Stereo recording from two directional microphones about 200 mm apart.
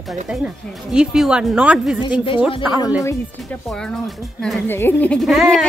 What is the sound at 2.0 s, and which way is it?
Speech, 25° left (ahead or behind).